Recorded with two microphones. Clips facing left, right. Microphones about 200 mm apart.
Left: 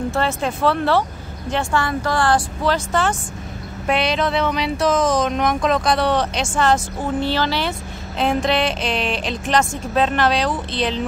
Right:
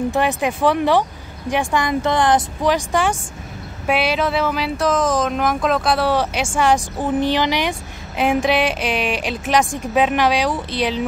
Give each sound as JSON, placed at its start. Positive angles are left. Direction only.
{"t": 0.1, "sound": "speech", "side_deg": -15}